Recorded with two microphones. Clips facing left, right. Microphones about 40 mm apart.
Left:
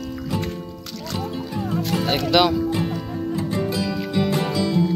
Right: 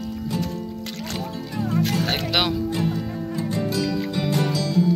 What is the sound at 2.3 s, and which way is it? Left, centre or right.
Speech, centre.